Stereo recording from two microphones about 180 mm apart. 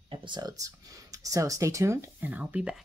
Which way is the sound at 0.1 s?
25° right (ahead or behind).